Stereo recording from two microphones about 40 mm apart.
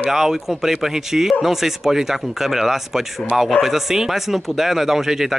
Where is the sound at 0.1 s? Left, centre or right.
Centre.